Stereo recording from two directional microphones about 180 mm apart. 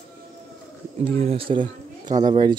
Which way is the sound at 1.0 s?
30° right (ahead or behind).